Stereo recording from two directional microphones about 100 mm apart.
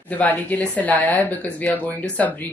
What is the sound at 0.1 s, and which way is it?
Speech, 15° left (ahead or behind).